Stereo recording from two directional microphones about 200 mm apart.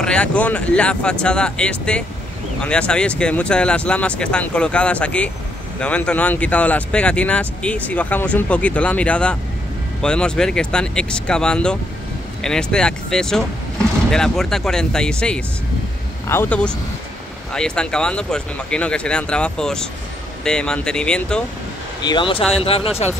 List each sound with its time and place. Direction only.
0.0 s speech: 5° left (ahead or behind)
22.0 s speech: 25° left (ahead or behind)